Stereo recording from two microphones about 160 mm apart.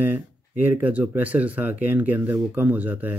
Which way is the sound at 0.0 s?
10° right (ahead or behind).